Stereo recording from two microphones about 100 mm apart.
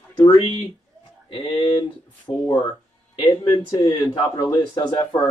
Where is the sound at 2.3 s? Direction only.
30° left (ahead or behind).